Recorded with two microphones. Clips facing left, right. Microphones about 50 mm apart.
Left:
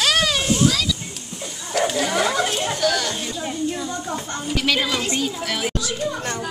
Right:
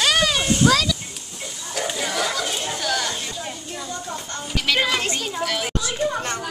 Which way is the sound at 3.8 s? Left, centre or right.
Left.